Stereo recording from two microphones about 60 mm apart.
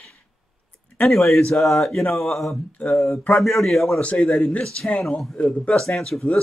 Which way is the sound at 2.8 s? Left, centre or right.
Left.